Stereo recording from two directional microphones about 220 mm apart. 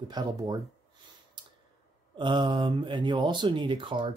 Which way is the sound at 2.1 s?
20° right (ahead or behind).